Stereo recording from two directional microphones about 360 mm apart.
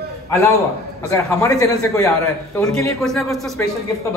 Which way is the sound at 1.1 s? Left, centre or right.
Centre.